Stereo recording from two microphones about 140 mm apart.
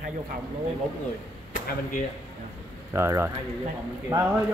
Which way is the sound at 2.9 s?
20° right (ahead or behind).